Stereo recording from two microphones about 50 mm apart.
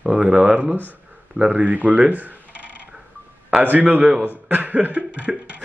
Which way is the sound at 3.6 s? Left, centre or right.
Right.